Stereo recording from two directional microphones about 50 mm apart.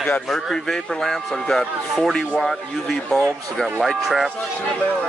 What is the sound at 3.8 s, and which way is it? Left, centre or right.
Speech, centre.